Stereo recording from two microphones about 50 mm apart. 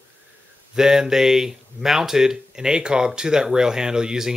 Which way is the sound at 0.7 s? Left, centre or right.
Centre.